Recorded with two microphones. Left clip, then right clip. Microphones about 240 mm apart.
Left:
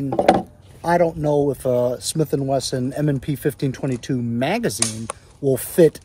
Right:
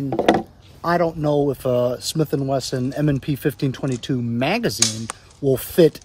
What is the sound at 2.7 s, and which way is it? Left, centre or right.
Speech, right.